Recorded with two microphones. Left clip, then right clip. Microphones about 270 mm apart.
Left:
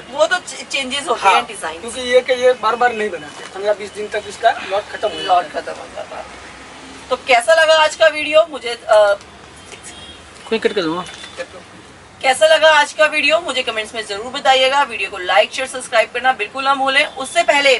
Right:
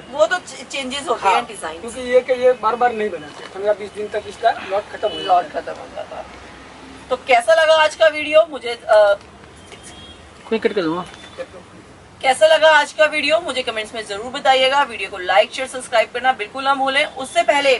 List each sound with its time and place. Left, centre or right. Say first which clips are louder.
0.2 s a woman's voice: left 1 dB; centre
7.2 s a woman's voice: left 1 dB; centre
10.5 s a woman's voice: left 1 dB; centre
12.2 s a woman's voice: left 1 dB; centre